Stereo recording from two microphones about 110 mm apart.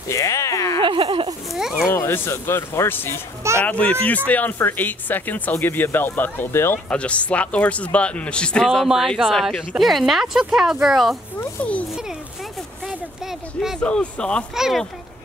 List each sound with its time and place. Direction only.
0.1 s speech: 25° left (ahead or behind)
0.7 s speech: 55° right (ahead or behind)
1.5 s speech: centre (ahead or behind)
1.9 s speech: 25° left (ahead or behind); by 11.1 s 5° right (ahead or behind)
11.3 s speech: 10° left (ahead or behind)
12.8 s a sound: 5° right (ahead or behind)
13.7 s speech: 10° left (ahead or behind)
14.5 s speech: 5° right (ahead or behind)